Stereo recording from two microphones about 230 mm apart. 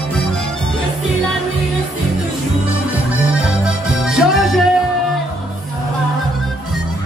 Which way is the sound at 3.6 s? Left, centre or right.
Centre.